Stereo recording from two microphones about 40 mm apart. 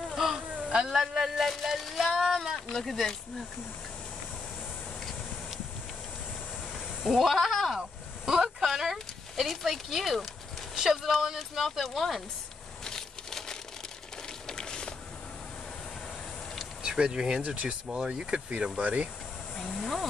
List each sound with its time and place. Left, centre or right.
0.1 s a sound: centre
1.1 s speech: centre
1.5 s a sound: centre
2.7 s speech: centre
7.0 s speech: centre
7.3 s speech: centre
8.3 s speech: centre
9.4 s speech: centre
12.8 s a sound: centre
16.8 s speech: right
19.5 s speech: centre